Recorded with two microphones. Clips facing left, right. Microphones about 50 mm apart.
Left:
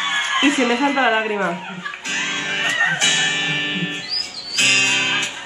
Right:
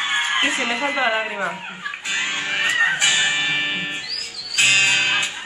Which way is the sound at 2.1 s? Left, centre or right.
Centre.